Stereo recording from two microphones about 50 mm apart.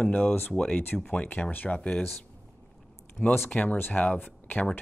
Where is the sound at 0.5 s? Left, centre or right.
Centre.